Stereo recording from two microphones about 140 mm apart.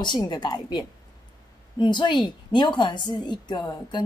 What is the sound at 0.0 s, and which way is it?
A woman's voice, 30° left (ahead or behind).